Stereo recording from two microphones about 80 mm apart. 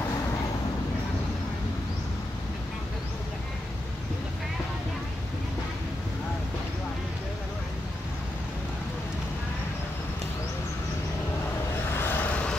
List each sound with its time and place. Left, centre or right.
11.9 s vehicle: left